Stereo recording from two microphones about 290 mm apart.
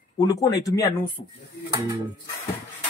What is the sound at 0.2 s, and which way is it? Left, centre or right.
A man's voice, centre.